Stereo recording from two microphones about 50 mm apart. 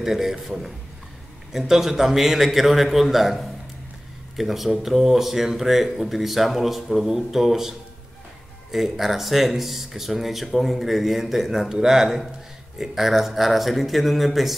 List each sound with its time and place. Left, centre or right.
0.0 s speech: centre
8.7 s speech: centre